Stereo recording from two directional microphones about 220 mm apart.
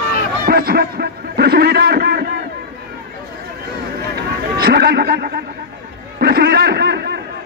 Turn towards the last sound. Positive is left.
turn(degrees=-50)  # may be behind; listen again after turning